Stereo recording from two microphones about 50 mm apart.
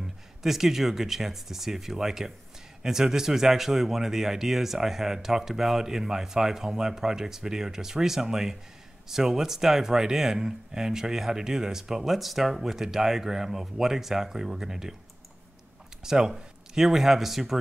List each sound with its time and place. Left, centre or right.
0.0 s speech: centre
16.0 s speech: centre